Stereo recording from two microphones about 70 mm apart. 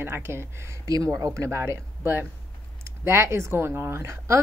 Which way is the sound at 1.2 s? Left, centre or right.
Right.